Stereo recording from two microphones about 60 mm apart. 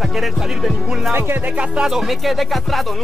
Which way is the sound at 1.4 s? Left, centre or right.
Centre.